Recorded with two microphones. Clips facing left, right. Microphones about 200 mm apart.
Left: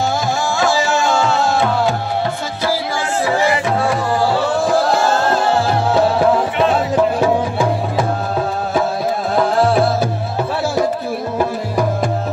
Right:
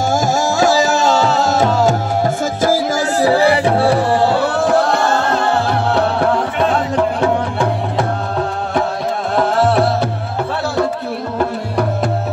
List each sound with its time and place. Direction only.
0.1 s music: 40° right (ahead or behind)
4.7 s music: 5° left (ahead or behind)